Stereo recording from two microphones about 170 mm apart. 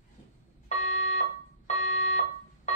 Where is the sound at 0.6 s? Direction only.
45° left (ahead or behind).